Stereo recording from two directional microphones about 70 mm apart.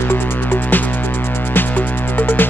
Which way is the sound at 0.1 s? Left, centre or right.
Left.